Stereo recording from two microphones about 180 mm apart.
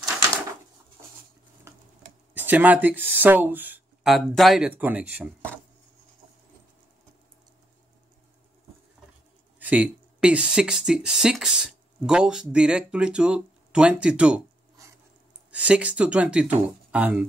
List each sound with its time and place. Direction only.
0.0 s a sound: 15° right (ahead or behind)
1.7 s tick-tock: 15° right (ahead or behind)
2.3 s speech: 10° right (ahead or behind)
9.6 s speech: 10° right (ahead or behind)
15.5 s speech: 10° right (ahead or behind)